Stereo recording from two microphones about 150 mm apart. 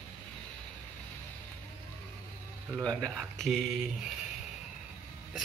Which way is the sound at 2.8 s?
5° left (ahead or behind).